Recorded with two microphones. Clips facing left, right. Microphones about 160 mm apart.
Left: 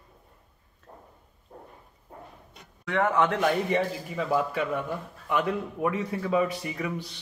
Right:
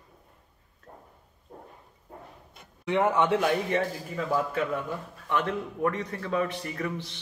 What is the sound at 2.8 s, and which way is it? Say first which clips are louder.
Speech: right 1 dB; 20° right (ahead or behind).